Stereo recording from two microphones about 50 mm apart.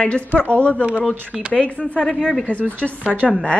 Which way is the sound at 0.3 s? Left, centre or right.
Left.